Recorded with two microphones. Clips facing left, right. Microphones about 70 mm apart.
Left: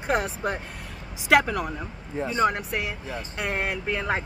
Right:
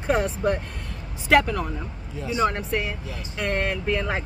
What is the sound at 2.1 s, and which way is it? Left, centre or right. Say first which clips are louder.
Speech: left 1 dB; left.